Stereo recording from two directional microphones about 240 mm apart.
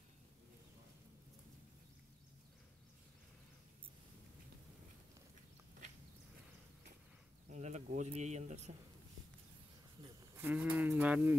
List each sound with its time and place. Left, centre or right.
7.5 s speech: right
10.0 s speech: centre